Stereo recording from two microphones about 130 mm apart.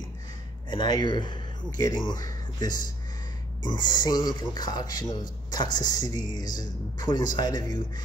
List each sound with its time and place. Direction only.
0.7 s speech: 35° left (ahead or behind)